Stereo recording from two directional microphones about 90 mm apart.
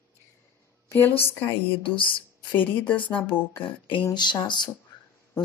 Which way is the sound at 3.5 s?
70° left (ahead or behind).